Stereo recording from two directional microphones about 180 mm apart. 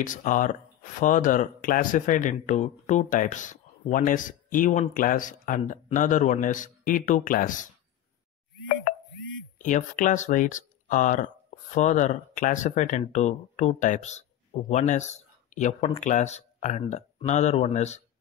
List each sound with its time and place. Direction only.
0.0 s speech: 45° left (ahead or behind)
9.6 s speech: 45° left (ahead or behind)